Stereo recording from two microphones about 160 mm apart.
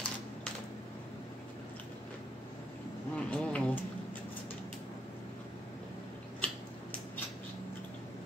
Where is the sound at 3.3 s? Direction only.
10° left (ahead or behind).